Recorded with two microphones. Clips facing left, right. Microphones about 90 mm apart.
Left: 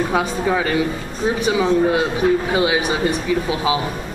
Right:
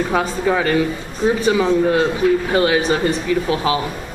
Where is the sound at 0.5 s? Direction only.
15° left (ahead or behind).